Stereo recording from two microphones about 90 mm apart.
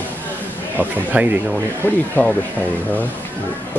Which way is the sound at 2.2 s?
20° left (ahead or behind).